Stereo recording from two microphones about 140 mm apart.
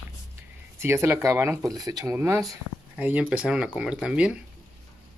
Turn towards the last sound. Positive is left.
turn(degrees=-5)  # may be behind; listen again after turning